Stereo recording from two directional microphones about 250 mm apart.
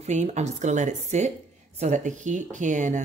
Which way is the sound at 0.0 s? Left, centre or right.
Right.